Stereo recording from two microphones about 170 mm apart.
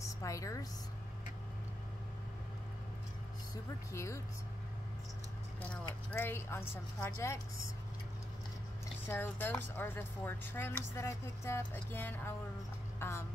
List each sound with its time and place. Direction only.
0.2 s a woman's voice: 20° left (ahead or behind)
3.9 s speech: 15° left (ahead or behind)
6.1 s speech: 15° left (ahead or behind)
9.0 s speech: 10° left (ahead or behind)